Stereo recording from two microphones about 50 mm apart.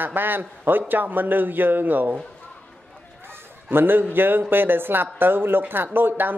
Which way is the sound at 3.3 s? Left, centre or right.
Right.